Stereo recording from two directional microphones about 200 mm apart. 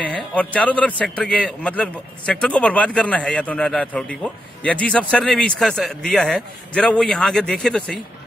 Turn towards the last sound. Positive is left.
turn(degrees=5)  # may be behind; listen again after turning